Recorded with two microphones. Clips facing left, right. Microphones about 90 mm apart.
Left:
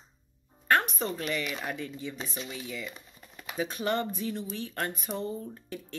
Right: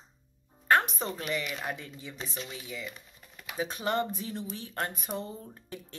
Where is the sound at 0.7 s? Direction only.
20° right (ahead or behind).